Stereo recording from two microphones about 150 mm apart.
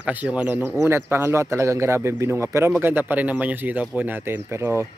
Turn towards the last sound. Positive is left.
turn(degrees=-15)  # may be behind; listen again after turning